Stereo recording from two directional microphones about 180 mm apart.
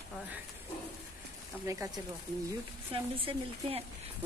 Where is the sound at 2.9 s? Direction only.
30° right (ahead or behind).